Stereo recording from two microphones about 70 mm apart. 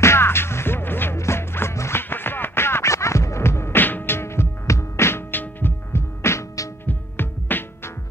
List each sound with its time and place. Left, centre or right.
0.0 s music: left
6.9 s heart sounds: left